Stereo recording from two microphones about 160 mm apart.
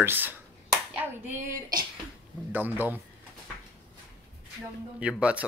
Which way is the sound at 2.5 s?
10° right (ahead or behind).